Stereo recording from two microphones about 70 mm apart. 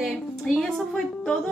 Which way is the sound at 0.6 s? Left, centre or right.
Centre.